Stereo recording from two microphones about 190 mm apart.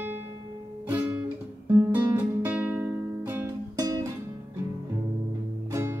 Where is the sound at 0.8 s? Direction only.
10° right (ahead or behind).